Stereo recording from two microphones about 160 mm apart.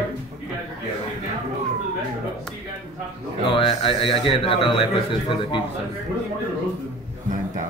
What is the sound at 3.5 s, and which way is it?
Speech, 35° left (ahead or behind).